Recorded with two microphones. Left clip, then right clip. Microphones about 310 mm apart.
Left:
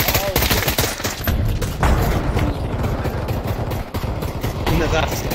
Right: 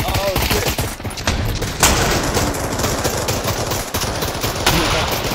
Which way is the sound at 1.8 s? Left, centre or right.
Right.